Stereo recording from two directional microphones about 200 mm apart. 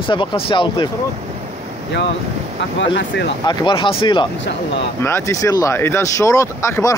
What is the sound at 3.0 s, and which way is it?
Speech, 60° left (ahead or behind).